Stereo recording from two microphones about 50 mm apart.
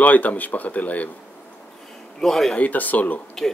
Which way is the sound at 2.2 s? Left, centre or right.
Centre.